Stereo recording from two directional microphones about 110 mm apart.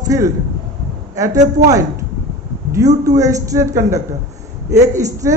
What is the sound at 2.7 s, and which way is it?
A man's voice, 35° right (ahead or behind).